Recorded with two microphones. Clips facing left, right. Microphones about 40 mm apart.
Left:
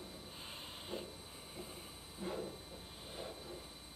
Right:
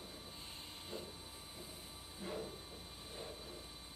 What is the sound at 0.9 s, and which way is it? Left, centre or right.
Hiss, left.